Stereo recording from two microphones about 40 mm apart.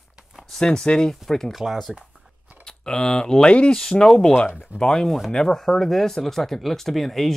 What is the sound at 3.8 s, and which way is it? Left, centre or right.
Speech, centre.